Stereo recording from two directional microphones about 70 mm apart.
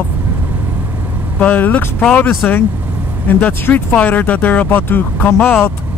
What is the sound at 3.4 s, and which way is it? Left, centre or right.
Speech, left.